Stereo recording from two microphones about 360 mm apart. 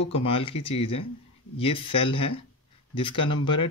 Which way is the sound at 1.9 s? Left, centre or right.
Centre.